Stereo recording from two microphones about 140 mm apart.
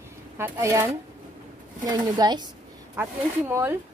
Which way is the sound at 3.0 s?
15° right (ahead or behind).